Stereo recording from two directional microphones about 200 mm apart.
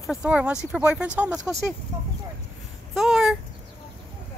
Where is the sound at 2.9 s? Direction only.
Centre (ahead or behind).